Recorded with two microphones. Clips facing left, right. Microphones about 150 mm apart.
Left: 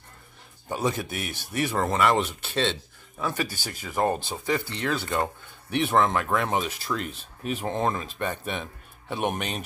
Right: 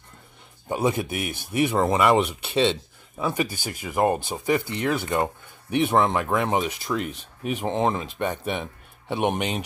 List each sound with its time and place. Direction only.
0.7 s speech: 20° right (ahead or behind)